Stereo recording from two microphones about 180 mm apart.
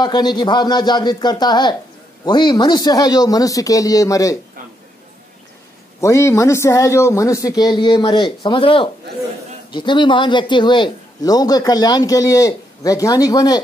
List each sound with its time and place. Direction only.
0.0 s a man's voice: 25° left (ahead or behind)
5.9 s a man's voice: 15° left (ahead or behind)